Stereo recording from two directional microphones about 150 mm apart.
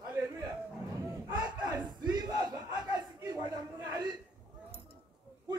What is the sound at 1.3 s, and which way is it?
Battle cry, 30° right (ahead or behind).